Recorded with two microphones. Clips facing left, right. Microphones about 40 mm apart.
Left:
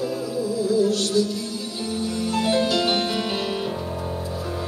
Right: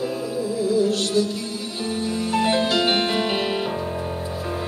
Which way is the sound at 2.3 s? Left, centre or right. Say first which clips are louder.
Right 1 dB; right.